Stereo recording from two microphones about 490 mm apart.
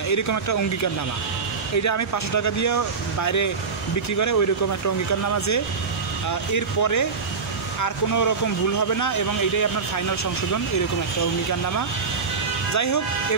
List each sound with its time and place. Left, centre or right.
0.1 s speech: left
1.8 s speech: left
6.5 s speech: left
12.7 s speech: left